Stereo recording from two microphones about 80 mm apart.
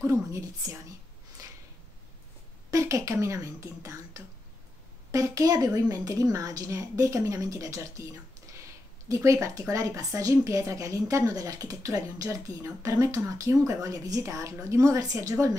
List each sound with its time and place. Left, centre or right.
0.3 s speech: right
2.7 s a woman's voice: right
9.1 s speech: right